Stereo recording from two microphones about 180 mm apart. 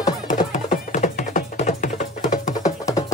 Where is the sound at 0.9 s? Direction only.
45° left (ahead or behind).